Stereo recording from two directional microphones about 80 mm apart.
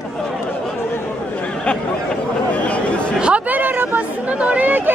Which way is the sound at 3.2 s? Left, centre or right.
Centre.